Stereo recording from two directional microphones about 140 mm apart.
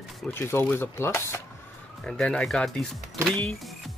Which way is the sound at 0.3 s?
15° left (ahead or behind).